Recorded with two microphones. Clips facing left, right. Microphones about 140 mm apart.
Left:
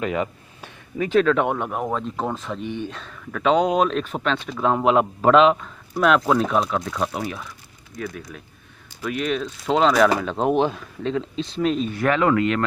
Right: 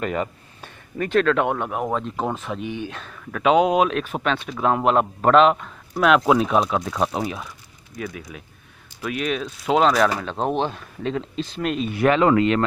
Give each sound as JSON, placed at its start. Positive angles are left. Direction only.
{"t": 0.0, "sound": "speech", "side_deg": 0}
{"t": 8.0, "sound": "speech", "side_deg": -5}
{"t": 12.0, "sound": "speech", "side_deg": -20}